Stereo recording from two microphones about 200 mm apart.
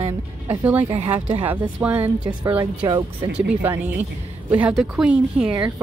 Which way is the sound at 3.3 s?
10° right (ahead or behind).